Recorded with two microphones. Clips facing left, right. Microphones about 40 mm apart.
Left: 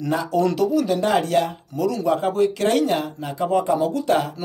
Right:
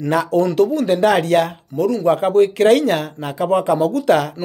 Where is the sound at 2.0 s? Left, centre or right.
Right.